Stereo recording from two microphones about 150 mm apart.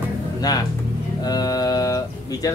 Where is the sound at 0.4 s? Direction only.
25° left (ahead or behind).